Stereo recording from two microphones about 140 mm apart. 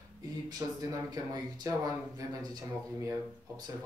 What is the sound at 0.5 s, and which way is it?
Speech, 25° right (ahead or behind).